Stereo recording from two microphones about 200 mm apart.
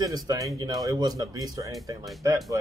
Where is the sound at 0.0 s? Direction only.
20° right (ahead or behind).